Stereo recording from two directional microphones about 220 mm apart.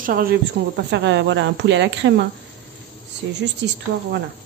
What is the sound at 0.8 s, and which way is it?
A woman's voice, 50° right (ahead or behind).